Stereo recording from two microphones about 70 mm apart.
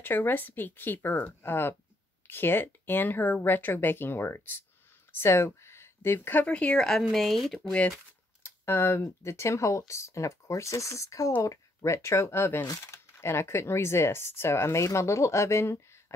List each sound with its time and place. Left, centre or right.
0.0 s speech: left
6.4 s speech: centre
8.4 s speech: left